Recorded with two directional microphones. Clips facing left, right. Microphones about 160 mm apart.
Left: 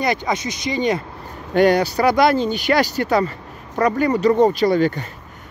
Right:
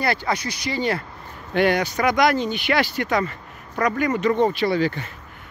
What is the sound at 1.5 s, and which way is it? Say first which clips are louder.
Speech: left 5 dB; 40° left (ahead or behind).